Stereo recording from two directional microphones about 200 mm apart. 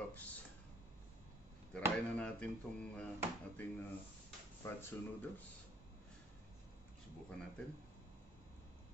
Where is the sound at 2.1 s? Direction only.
5° left (ahead or behind).